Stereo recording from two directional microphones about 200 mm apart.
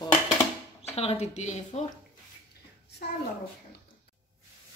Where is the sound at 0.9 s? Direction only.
30° left (ahead or behind).